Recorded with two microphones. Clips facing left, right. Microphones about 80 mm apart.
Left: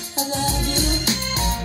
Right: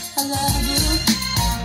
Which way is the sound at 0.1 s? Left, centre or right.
Left.